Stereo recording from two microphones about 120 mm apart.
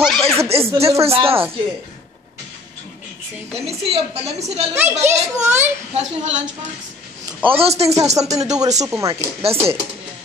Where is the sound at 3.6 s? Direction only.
55° right (ahead or behind).